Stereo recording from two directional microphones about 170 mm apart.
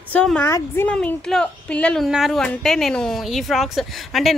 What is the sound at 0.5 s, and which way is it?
Speech, 15° left (ahead or behind).